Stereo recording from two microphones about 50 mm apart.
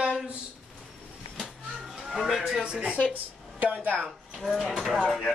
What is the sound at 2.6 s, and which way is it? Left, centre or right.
Speech, right.